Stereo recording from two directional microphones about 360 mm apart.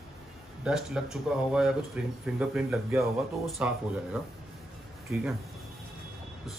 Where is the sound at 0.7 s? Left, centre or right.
Centre.